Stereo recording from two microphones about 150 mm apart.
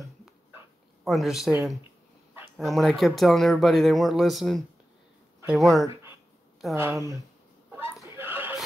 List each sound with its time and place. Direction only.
1.0 s speech: centre (ahead or behind)
6.7 s speech: 15° right (ahead or behind)
7.7 s chuckle: 15° right (ahead or behind)